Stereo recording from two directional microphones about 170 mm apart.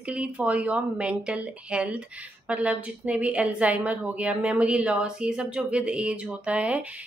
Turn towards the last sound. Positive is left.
turn(degrees=-5)  # may be behind; listen again after turning